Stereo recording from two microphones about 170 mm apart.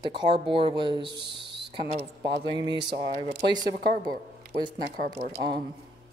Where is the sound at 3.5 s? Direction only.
25° right (ahead or behind).